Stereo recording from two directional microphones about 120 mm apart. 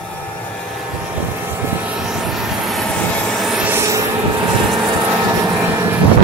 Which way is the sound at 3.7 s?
25° right (ahead or behind).